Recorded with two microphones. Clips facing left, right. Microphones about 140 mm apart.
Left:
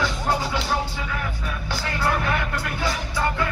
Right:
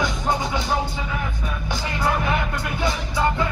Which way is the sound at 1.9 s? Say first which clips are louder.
Right 1 dB; 20° right (ahead or behind).